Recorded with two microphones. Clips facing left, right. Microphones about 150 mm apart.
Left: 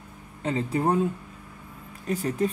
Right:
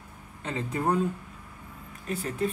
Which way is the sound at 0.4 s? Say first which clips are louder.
Left 5 dB; 30° left (ahead or behind).